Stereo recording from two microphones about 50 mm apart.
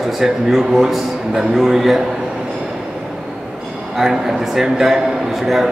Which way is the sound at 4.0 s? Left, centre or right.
Centre.